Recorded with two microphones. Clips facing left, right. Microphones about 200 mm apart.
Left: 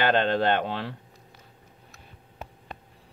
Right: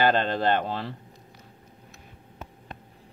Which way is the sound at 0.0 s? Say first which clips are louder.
Even; 65° left (ahead or behind).